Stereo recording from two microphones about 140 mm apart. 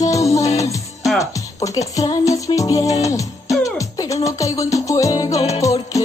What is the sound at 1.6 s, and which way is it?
Music, 25° left (ahead or behind).